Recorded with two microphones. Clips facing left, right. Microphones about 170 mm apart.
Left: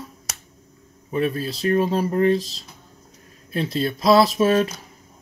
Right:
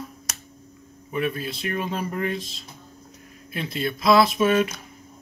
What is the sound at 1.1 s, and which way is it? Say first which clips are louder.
Speech: left 4 dB; 35° left (ahead or behind).